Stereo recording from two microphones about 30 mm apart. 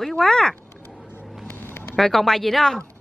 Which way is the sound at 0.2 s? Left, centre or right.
Centre.